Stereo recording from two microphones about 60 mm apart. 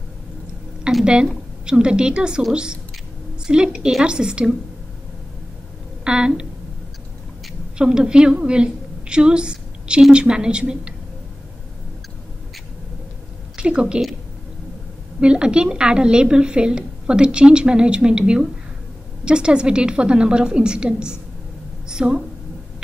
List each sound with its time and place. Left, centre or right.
1.0 s a woman's voice: centre
6.0 s a woman's voice: centre
7.7 s a woman's voice: centre
9.1 s a sound: centre
10.1 s a woman's voice: centre
13.6 s a woman's voice: centre
15.1 s a woman's voice: centre